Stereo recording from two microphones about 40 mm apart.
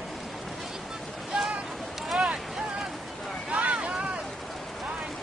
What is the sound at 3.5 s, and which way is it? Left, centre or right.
Boat, right.